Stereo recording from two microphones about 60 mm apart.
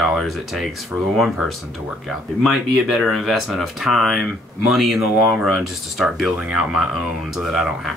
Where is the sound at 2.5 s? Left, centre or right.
Centre.